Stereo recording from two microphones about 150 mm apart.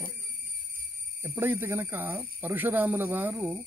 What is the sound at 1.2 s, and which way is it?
Speech, 15° right (ahead or behind).